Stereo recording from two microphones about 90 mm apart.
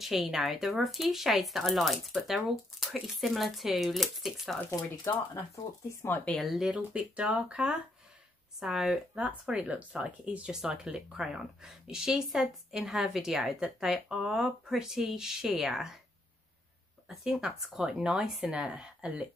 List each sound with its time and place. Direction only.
0.0 s speech: 5° right (ahead or behind)
4.6 s speech: 30° left (ahead or behind)
6.2 s speech: centre (ahead or behind)
6.7 s speech: 15° right (ahead or behind)
17.1 s speech: 5° right (ahead or behind)